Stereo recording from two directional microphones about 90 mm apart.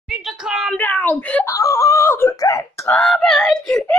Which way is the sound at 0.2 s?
5° right (ahead or behind).